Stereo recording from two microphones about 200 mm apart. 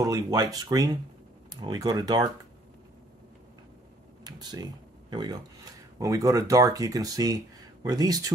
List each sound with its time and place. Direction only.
0.0 s speech: 20° right (ahead or behind)
4.2 s a sound: 20° right (ahead or behind)
5.1 s speech: 20° right (ahead or behind)